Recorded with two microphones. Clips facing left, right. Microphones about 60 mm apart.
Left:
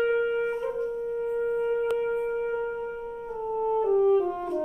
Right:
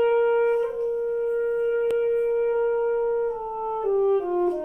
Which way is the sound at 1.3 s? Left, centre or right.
Centre.